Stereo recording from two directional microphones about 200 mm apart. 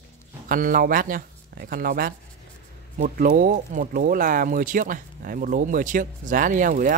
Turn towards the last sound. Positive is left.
turn(degrees=-40)  # may be behind; listen again after turning